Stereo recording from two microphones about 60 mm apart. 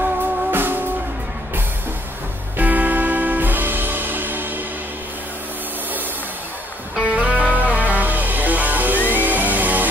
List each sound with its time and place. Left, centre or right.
0.5 s music: right
2.5 s music: right
7.1 s music: right